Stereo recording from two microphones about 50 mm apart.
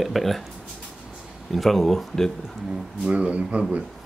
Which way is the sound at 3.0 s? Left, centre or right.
Right.